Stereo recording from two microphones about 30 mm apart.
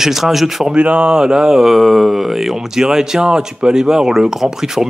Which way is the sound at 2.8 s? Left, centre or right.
Centre.